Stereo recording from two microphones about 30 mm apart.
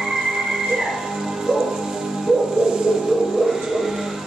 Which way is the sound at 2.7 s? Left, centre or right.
Right.